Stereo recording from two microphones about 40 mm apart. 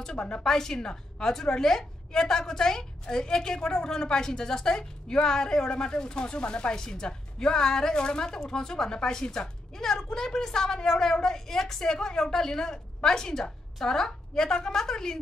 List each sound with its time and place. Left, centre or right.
0.0 s a woman's voice: left